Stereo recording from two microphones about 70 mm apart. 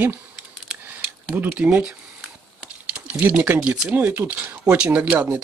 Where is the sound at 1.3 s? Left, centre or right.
Right.